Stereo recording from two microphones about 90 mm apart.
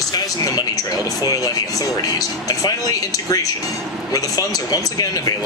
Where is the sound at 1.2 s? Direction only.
40° left (ahead or behind).